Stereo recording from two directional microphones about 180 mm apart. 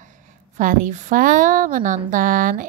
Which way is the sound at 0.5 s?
45° right (ahead or behind).